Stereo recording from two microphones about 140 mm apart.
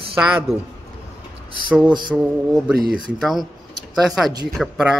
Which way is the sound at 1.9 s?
35° right (ahead or behind).